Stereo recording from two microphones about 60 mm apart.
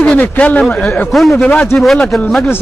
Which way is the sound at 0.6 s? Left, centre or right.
Centre.